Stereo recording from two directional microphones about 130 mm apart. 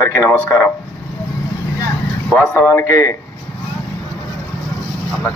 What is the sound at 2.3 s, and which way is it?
Speech, 20° left (ahead or behind).